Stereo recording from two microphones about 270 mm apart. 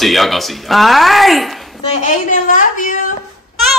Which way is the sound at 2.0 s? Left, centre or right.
Left.